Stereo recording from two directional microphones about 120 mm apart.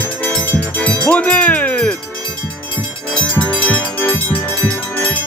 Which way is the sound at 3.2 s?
15° left (ahead or behind).